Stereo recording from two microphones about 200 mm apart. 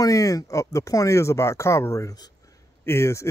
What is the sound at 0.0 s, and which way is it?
Speech, 15° left (ahead or behind).